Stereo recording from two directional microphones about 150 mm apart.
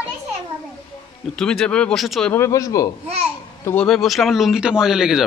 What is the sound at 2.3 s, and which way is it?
Speech, 20° left (ahead or behind).